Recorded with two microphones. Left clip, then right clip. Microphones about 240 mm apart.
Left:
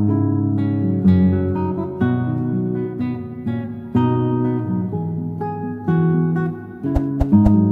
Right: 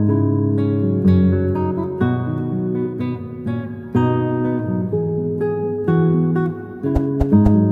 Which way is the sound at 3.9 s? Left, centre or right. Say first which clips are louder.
Right 1 dB; right.